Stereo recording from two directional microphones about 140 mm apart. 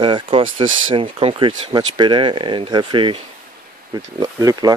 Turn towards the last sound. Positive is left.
turn(degrees=-25)  # may be behind; listen again after turning